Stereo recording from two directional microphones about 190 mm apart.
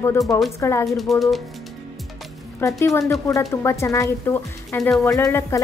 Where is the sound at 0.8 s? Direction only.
Centre (ahead or behind).